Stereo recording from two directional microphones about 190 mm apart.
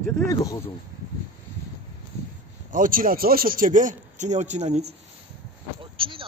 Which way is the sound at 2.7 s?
45° right (ahead or behind).